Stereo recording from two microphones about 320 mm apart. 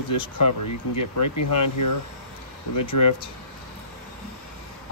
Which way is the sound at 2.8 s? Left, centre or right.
Left.